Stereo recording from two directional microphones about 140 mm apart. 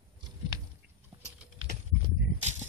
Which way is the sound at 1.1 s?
35° right (ahead or behind).